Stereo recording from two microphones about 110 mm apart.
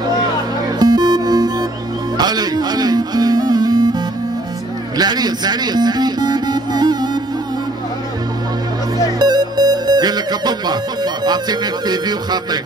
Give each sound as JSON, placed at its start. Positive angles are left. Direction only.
{"t": 0.7, "sound": "music", "side_deg": -40}
{"t": 4.9, "sound": "music", "side_deg": -40}
{"t": 9.2, "sound": "music", "side_deg": -40}